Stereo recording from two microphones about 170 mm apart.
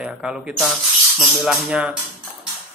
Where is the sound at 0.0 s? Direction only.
5° right (ahead or behind).